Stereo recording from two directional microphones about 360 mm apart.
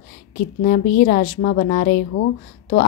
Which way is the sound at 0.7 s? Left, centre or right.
Left.